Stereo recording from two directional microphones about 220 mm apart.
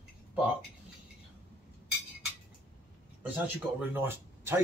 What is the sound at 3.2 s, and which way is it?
Speech, 10° right (ahead or behind).